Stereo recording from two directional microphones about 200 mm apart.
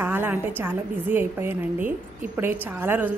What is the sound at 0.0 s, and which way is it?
A woman's voice, 10° right (ahead or behind).